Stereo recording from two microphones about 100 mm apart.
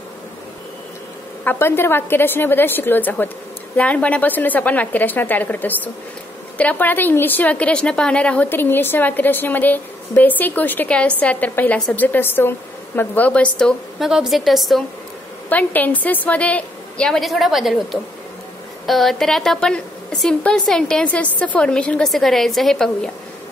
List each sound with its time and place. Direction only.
1.4 s a woman's voice: 20° left (ahead or behind)
13.9 s a woman's voice: 5° right (ahead or behind)
15.5 s a woman's voice: 15° left (ahead or behind); by 17.7 s centre (ahead or behind)
18.9 s a woman's voice: centre (ahead or behind)